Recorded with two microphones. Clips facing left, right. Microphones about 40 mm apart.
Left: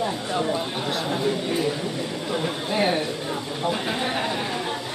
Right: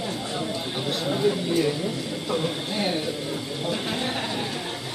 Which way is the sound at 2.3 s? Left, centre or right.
Left.